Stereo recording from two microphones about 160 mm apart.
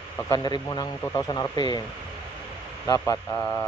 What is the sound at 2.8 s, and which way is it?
Speech, 20° left (ahead or behind).